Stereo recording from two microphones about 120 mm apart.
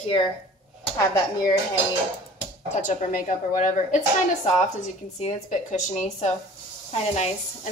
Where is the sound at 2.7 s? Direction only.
90° left.